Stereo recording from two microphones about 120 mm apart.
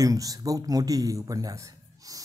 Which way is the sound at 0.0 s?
30° right (ahead or behind).